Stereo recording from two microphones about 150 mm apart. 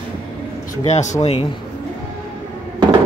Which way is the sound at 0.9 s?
50° left (ahead or behind).